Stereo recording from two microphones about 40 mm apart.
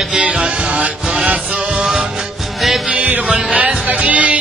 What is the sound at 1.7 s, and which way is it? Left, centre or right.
Music, centre.